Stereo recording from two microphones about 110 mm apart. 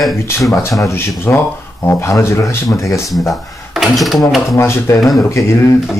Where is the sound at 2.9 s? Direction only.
Centre (ahead or behind).